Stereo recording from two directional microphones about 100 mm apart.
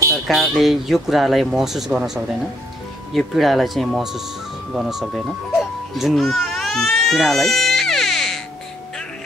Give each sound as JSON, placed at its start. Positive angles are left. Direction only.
{"t": 0.3, "sound": "speech", "side_deg": 0}